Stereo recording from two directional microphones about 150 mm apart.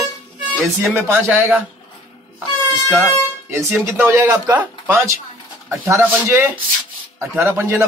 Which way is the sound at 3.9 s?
20° right (ahead or behind).